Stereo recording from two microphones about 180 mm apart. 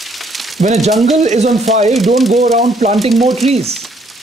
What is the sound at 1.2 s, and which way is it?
Speech, 40° right (ahead or behind).